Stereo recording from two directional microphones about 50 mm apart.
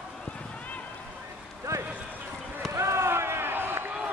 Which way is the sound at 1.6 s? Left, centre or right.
Right.